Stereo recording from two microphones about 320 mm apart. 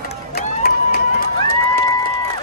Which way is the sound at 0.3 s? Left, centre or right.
Left.